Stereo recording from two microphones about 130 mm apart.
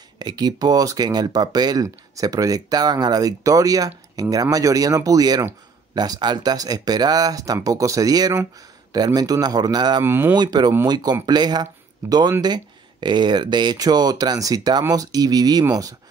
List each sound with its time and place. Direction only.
0.2 s speech: 30° right (ahead or behind)
10.0 s speech: 15° right (ahead or behind)
10.3 s speech: 30° right (ahead or behind)